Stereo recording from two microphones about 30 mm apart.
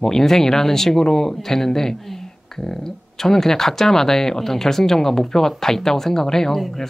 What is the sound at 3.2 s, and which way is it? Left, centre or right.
Speech, centre.